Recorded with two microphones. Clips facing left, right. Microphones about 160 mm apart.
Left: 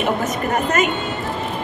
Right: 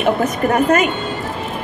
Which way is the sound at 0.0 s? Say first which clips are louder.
Right 4 dB; 55° right (ahead or behind).